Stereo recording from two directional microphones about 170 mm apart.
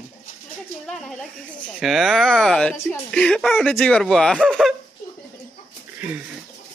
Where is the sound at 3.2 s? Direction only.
5° left (ahead or behind).